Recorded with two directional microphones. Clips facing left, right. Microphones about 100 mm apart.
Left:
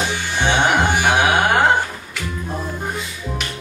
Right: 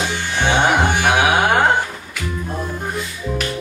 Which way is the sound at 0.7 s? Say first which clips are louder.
Right 1 dB; 15° right (ahead or behind).